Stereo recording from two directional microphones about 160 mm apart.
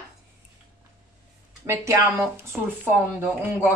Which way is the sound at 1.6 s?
15° right (ahead or behind).